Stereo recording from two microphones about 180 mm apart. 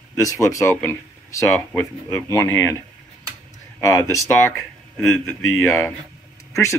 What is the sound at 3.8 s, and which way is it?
Speech, 15° left (ahead or behind).